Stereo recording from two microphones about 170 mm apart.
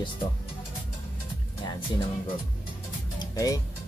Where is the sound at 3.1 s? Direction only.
20° left (ahead or behind).